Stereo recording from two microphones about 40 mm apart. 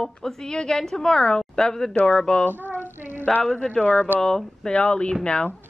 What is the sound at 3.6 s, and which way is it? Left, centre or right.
Speech, left.